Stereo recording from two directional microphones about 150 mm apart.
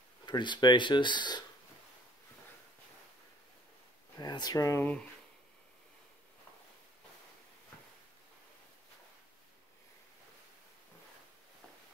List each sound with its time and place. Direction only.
0.2 s speech: 30° left (ahead or behind)
4.2 s speech: 25° left (ahead or behind)